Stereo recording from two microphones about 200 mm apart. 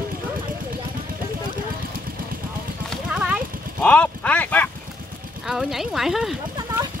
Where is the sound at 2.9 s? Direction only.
5° right (ahead or behind).